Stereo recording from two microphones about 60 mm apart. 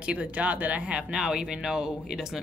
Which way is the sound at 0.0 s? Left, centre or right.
Right.